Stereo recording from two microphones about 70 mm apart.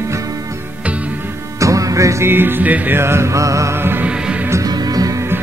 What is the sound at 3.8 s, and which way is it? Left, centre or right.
Music, right.